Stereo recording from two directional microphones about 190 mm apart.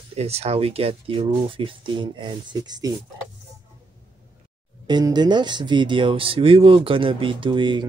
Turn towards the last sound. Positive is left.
turn(degrees=-25)  # may be behind; listen again after turning